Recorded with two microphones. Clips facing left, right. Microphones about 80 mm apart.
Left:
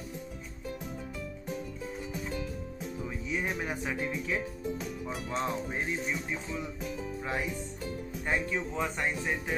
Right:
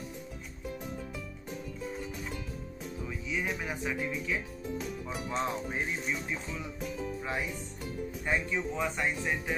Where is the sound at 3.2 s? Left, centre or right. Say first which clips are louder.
Left 1 dB; left.